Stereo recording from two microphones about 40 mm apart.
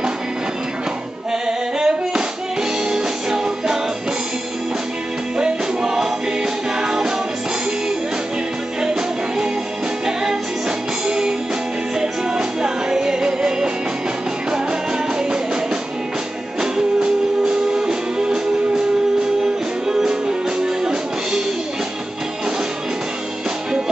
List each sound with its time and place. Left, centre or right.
1.8 s a sound: centre
2.9 s music: centre
5.4 s music: centre
11.1 s music: centre
16.7 s music: centre
19.9 s music: centre